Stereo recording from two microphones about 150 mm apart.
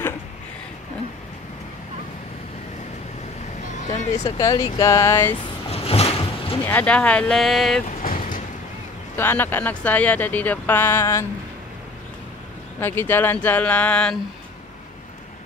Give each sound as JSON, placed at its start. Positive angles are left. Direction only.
{"t": 3.6, "sound": "a sound", "side_deg": 55}
{"t": 4.0, "sound": "speech", "side_deg": 50}
{"t": 4.4, "sound": "speech", "side_deg": 25}
{"t": 5.7, "sound": "boat", "side_deg": 40}
{"t": 6.6, "sound": "speech", "side_deg": 10}
{"t": 8.0, "sound": "vehicle", "side_deg": 60}
{"t": 9.1, "sound": "speech", "side_deg": 15}
{"t": 12.8, "sound": "speech", "side_deg": 15}